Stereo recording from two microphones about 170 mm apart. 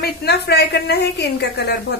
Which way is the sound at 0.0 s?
70° left (ahead or behind).